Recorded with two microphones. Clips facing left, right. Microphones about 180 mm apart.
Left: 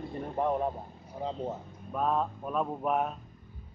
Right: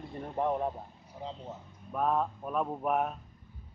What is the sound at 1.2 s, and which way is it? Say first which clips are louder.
Speech: left 7 dB; 50° left (ahead or behind).